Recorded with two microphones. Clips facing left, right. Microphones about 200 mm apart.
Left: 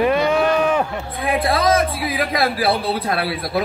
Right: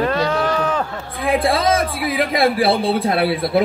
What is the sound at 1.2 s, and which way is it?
A woman's voice, 25° right (ahead or behind).